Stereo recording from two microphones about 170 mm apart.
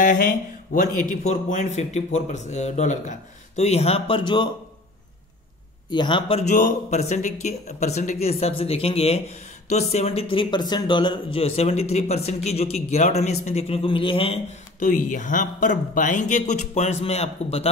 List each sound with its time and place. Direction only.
0.0 s speech: 50° left (ahead or behind); by 4.5 s 25° left (ahead or behind)
5.9 s a man's voice: 25° left (ahead or behind)
6.5 s speech: 45° left (ahead or behind)
14.8 s speech: 50° left (ahead or behind)